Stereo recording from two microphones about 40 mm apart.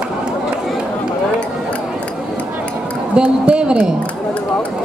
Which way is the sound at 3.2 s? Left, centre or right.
Right.